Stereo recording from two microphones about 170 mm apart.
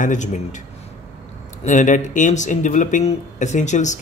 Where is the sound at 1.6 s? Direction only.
45° left (ahead or behind).